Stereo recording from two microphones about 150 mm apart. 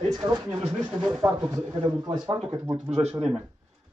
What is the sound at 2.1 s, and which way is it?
Speech, 35° right (ahead or behind).